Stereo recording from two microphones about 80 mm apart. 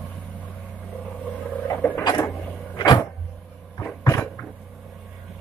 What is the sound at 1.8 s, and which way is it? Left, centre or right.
Printer, left.